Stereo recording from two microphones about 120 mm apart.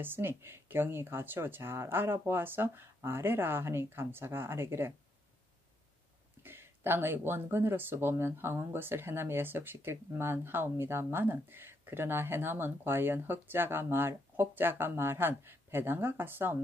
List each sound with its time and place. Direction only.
0.0 s speech: 20° right (ahead or behind)
6.4 s speech: 20° right (ahead or behind)